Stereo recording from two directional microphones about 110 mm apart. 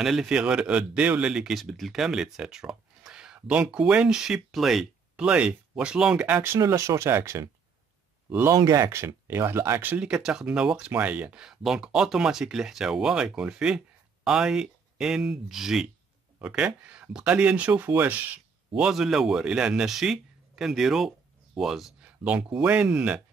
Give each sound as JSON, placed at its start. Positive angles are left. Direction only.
{"t": 0.0, "sound": "speech", "side_deg": -5}
{"t": 6.6, "sound": "speech", "side_deg": -30}
{"t": 8.5, "sound": "speech", "side_deg": -30}
{"t": 18.8, "sound": "speech", "side_deg": -5}